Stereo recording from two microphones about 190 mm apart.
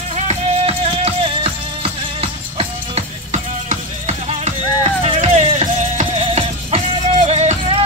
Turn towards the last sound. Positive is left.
turn(degrees=-35)  # may be behind; listen again after turning